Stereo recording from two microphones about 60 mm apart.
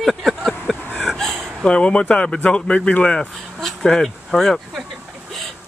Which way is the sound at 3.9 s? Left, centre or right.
Centre.